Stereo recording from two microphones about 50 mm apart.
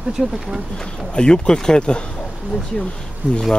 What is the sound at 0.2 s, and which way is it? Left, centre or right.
Speech, centre.